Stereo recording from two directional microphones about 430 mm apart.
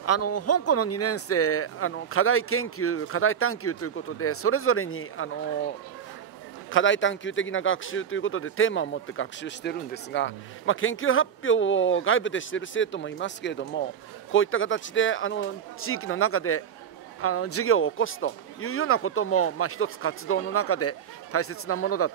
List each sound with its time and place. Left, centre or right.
0.0 s speech: left
6.7 s speech: left